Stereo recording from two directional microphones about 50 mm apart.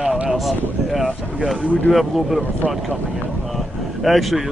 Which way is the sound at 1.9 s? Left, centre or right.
Centre.